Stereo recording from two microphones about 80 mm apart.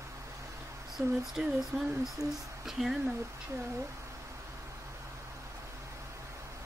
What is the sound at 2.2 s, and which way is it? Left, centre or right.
Speech, right.